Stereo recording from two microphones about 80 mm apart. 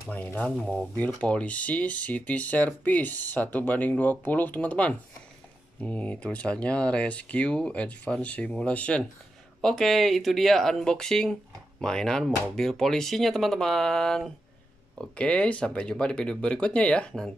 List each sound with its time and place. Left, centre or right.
0.1 s speech: left
9.6 s speech: centre